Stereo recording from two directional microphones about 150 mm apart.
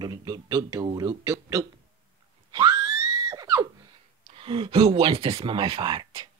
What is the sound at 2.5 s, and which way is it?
Screaming, 30° right (ahead or behind).